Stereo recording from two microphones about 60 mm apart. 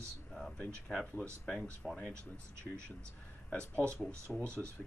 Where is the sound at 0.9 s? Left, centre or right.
Centre.